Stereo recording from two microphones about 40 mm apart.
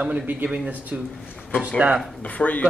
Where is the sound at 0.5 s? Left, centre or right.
Right.